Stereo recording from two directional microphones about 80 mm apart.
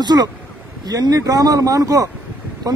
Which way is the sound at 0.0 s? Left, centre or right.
Right.